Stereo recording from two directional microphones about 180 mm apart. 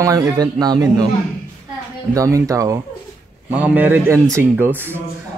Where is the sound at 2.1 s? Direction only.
15° right (ahead or behind).